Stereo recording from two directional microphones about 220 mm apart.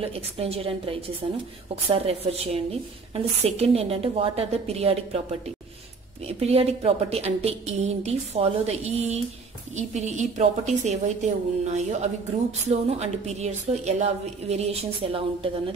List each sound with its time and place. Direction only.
0.0 s a woman's voice: 25° right (ahead or behind)